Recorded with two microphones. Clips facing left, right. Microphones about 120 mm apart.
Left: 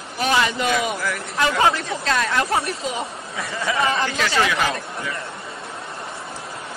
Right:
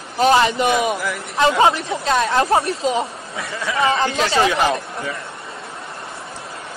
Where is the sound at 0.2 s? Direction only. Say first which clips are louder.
Right 6 dB; 30° right (ahead or behind).